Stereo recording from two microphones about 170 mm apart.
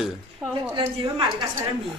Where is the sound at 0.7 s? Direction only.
30° right (ahead or behind).